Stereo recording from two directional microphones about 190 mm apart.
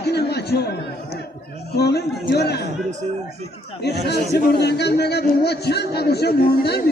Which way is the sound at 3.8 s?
60° left (ahead or behind).